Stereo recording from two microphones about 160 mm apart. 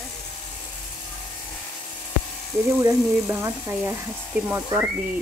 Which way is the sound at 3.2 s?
15° right (ahead or behind).